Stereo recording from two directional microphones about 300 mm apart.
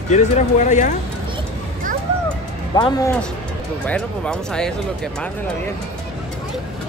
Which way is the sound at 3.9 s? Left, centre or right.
Centre.